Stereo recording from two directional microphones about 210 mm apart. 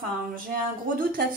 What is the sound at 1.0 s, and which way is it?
Speech, 40° right (ahead or behind).